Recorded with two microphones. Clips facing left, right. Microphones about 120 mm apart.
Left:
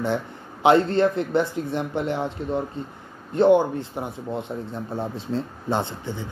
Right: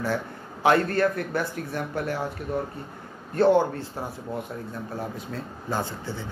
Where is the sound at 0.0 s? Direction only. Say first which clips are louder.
Left 3 dB; 20° left (ahead or behind).